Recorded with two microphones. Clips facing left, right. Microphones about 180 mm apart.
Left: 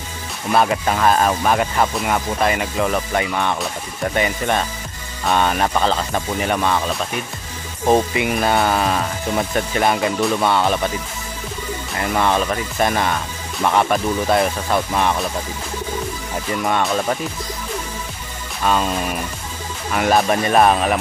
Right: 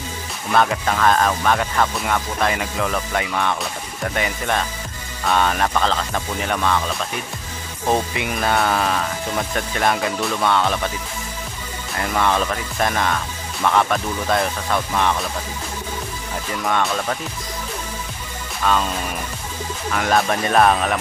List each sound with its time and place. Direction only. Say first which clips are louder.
0.6 s speech: left 1 dB; 10° left (ahead or behind)
7.9 s speech: left 5 dB; 5° left (ahead or behind)
12.2 s speech: left 1 dB; 10° left (ahead or behind)
16.6 s speech: left 2 dB; 15° left (ahead or behind)
20.0 s speech: left 3 dB; 10° left (ahead or behind)